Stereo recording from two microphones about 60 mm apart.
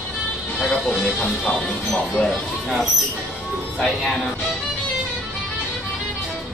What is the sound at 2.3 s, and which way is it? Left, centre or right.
Mouse, centre.